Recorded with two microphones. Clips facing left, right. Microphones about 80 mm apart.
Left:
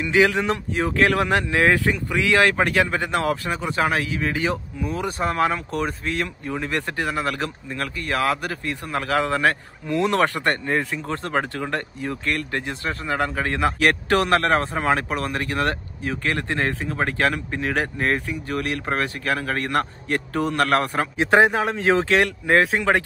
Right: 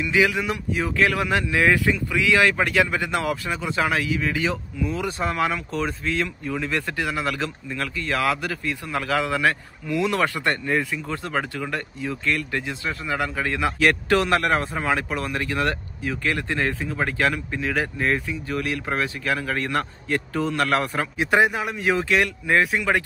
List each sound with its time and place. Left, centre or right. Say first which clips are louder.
0.0 s speech: left 2 dB; left
20.8 s speech: left 2 dB; left